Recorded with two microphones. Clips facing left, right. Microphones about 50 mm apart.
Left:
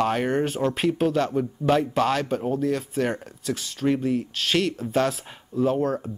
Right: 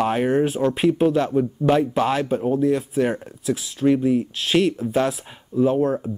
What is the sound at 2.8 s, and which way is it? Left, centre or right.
Speech, centre.